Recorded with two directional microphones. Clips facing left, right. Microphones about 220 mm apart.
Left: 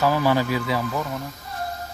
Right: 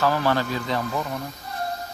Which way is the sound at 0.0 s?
10° left (ahead or behind).